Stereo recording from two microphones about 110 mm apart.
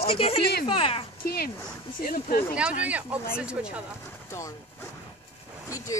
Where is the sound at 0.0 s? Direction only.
60° left (ahead or behind).